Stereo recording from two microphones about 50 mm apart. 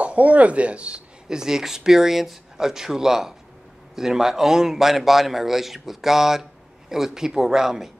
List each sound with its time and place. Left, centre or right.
0.0 s speech: right; by 7.9 s centre